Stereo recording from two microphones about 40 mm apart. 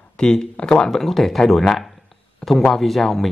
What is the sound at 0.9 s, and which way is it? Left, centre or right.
Speech, centre.